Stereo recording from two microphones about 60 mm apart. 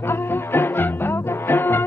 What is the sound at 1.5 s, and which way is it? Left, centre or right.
Music, left.